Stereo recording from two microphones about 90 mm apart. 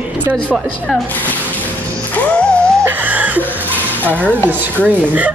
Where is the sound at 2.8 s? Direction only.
20° right (ahead or behind).